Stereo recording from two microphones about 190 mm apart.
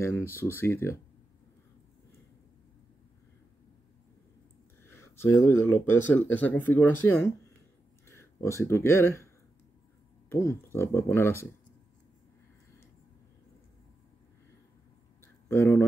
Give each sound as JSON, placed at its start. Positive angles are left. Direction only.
{"t": 0.0, "sound": "speech", "side_deg": 10}
{"t": 4.8, "sound": "speech", "side_deg": 15}
{"t": 10.3, "sound": "speech", "side_deg": 15}
{"t": 15.4, "sound": "speech", "side_deg": 15}